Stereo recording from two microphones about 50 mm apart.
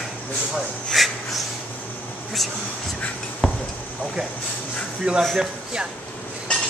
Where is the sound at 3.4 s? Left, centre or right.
Centre.